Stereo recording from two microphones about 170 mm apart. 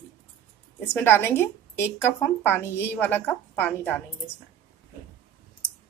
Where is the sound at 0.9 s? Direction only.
10° left (ahead or behind).